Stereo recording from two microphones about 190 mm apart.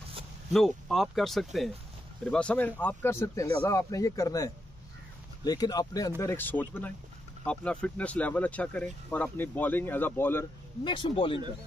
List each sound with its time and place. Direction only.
0.5 s speech: centre (ahead or behind)
10.8 s speech: 25° left (ahead or behind)